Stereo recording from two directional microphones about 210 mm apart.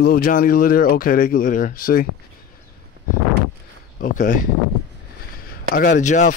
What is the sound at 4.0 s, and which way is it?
Speech, 40° left (ahead or behind).